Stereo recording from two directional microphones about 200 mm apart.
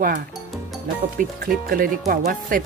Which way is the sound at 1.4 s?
45° right (ahead or behind).